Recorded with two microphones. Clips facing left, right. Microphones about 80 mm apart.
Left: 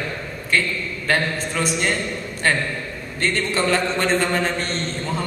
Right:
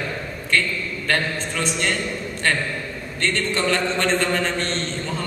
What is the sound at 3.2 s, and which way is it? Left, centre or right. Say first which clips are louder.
A man's voice: left 1 dB; centre.